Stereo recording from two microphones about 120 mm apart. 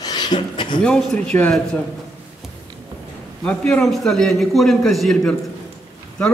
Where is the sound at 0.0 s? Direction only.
35° left (ahead or behind).